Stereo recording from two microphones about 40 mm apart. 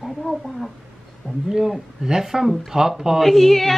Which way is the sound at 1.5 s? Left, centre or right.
Centre.